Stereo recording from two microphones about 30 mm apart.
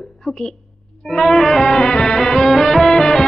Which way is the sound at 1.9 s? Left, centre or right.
Left.